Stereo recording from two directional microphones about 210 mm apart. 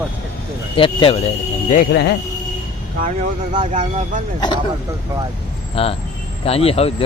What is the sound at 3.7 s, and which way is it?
Speech, 35° right (ahead or behind).